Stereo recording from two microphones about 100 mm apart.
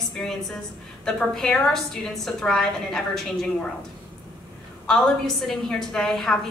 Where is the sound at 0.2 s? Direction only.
5° left (ahead or behind).